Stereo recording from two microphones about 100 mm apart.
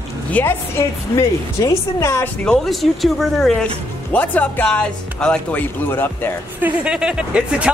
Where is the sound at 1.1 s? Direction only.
35° left (ahead or behind).